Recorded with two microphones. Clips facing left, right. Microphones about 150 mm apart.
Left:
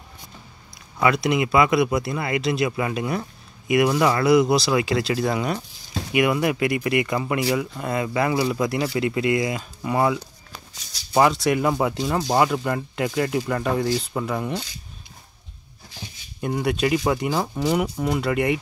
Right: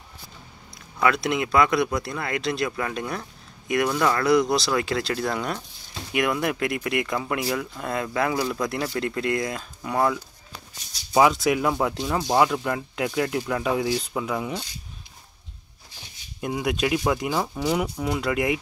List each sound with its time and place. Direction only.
1.0 s speech: centre (ahead or behind)
11.1 s speech: centre (ahead or behind)
16.3 s speech: centre (ahead or behind)